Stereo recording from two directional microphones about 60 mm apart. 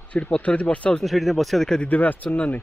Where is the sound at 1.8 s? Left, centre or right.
Left.